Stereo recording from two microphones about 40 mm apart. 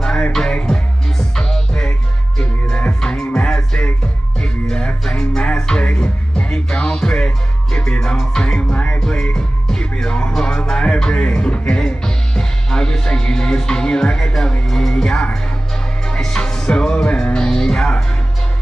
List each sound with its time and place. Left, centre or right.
0.0 s music: left
1.4 s music: left
2.9 s music: centre
7.2 s music: left
8.0 s music: centre
8.7 s music: left
9.0 s music: left
10.6 s music: left